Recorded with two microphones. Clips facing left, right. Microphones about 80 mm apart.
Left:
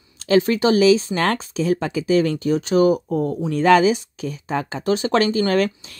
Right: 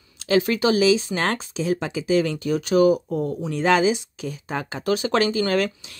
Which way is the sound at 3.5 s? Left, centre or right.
Left.